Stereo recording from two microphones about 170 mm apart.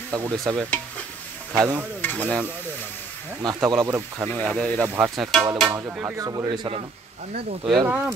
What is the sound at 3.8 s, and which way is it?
Speech, 15° right (ahead or behind).